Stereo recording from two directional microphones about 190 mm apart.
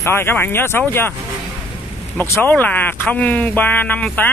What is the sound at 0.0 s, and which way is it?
Speech, 10° left (ahead or behind).